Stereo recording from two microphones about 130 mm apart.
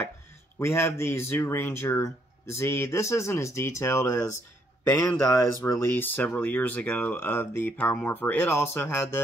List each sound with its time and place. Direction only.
0.6 s speech: 20° left (ahead or behind)